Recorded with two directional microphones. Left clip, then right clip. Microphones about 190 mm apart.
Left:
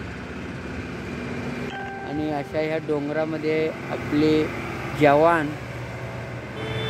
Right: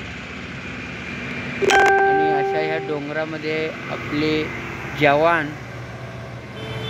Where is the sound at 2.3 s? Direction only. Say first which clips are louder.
Right 5 dB; 10° left (ahead or behind).